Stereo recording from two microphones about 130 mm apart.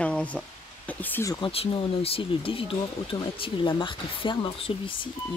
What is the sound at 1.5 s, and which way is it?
Speech, 50° left (ahead or behind).